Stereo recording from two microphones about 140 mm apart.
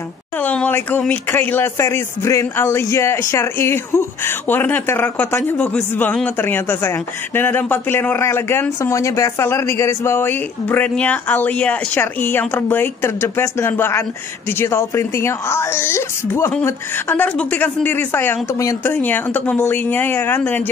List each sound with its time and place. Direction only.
0.4 s a woman's voice: 10° left (ahead or behind)